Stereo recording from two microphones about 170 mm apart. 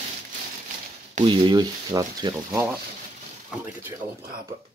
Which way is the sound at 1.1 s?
30° right (ahead or behind).